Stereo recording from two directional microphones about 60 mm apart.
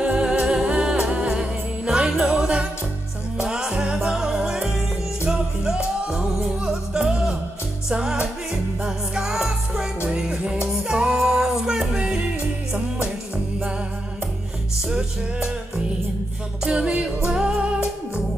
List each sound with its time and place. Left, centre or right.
0.0 s music: centre
14.9 s music: centre